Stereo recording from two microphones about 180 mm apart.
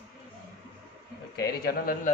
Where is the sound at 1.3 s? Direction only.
65° left (ahead or behind).